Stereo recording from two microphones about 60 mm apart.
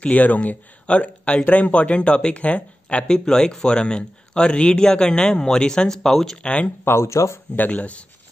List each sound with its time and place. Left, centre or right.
0.0 s speech: left
6.8 s speech: left
7.5 s speech: left